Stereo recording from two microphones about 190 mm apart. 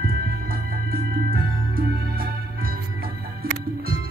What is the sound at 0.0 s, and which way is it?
Organ, 50° right (ahead or behind).